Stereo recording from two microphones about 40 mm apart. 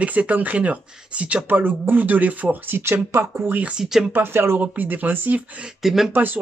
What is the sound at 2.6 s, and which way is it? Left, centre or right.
Speech, right.